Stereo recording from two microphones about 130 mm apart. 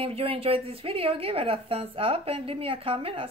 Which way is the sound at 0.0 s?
45° right (ahead or behind).